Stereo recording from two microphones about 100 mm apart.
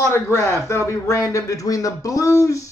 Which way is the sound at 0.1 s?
25° left (ahead or behind).